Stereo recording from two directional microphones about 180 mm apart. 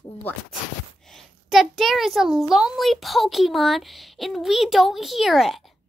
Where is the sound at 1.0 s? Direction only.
Centre (ahead or behind).